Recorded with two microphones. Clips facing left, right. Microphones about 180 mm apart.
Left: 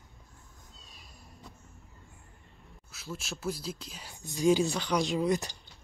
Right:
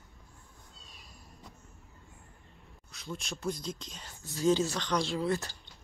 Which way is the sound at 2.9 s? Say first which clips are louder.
Even; 5° left (ahead or behind).